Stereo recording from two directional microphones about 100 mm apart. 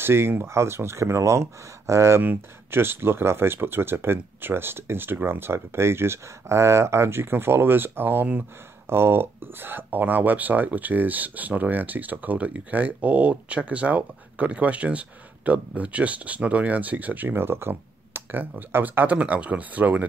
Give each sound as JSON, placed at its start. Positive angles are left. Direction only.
{"t": 0.0, "sound": "speech", "side_deg": -25}